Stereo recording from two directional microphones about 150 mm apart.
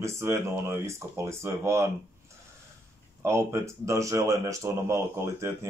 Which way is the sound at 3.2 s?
20° right (ahead or behind).